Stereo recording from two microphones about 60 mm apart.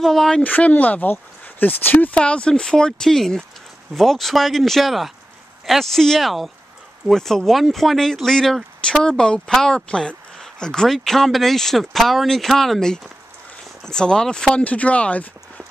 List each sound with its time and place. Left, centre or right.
0.0 s speech: centre
0.4 s speech: left
2.1 s speech: centre
14.5 s speech: left